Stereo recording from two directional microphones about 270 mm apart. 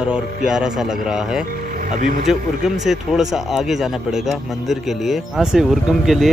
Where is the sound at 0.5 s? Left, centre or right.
Centre.